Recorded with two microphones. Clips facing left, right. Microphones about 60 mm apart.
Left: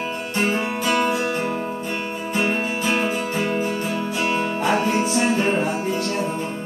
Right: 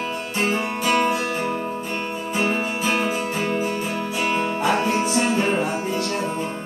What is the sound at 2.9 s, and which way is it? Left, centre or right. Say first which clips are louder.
Music: left 1 dB; centre.